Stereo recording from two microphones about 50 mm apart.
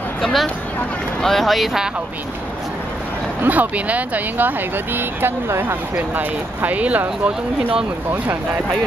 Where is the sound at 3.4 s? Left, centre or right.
Right.